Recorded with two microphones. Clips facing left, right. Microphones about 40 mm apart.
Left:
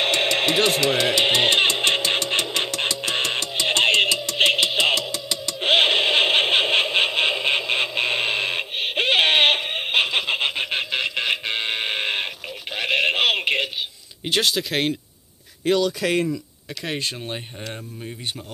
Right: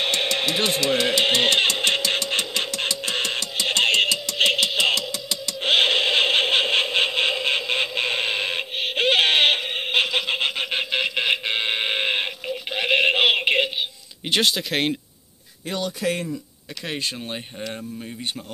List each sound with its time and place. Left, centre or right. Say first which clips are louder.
0.0 s music: left 2 dB; left
0.9 s speech: left 1 dB; centre
1.7 s music: left 1 dB; centre
2.0 s a sound: left 1 dB; left
3.0 s music: left 2 dB; left
5.6 s a sound: left 1 dB; centre
14.4 s speech: even; centre
15.6 s a man's voice: left 5 dB; left